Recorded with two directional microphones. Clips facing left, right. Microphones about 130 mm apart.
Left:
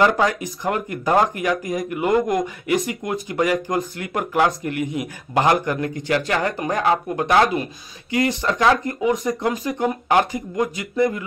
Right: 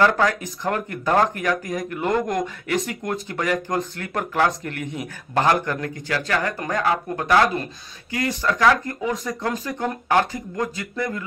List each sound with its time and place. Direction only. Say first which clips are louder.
0.0 s a man's voice: left 1 dB; 15° left (ahead or behind)